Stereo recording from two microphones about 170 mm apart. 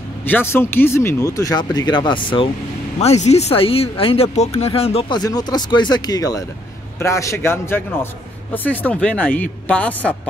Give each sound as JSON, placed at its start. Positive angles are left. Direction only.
{"t": 0.2, "sound": "speech", "side_deg": 10}
{"t": 5.2, "sound": "a man's voice", "side_deg": 25}